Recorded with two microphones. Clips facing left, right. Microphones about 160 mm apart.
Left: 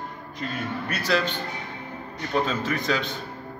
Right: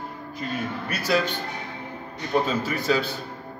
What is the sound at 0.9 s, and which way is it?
Speech, 10° right (ahead or behind).